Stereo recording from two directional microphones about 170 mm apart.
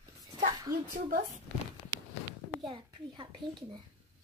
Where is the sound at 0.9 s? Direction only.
50° right (ahead or behind).